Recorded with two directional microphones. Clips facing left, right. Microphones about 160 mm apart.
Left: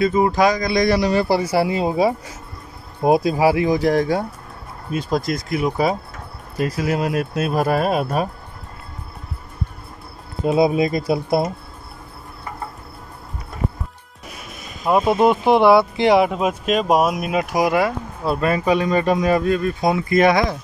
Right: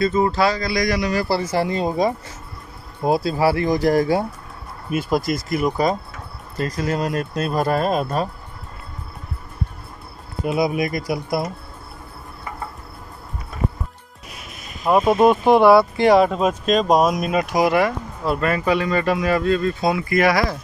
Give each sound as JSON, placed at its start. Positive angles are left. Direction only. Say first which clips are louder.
{"t": 0.0, "sound": "speech", "louder": "left 2 dB", "side_deg": 15}
{"t": 1.2, "sound": "speech", "louder": "left 3 dB", "side_deg": 15}
{"t": 10.4, "sound": "speech", "louder": "left 4 dB", "side_deg": 25}
{"t": 14.8, "sound": "speech", "louder": "right 1 dB", "side_deg": 10}